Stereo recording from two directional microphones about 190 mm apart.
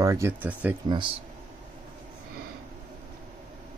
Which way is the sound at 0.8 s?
25° right (ahead or behind).